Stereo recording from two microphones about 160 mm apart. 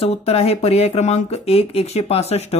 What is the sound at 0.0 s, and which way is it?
Speech, 40° left (ahead or behind).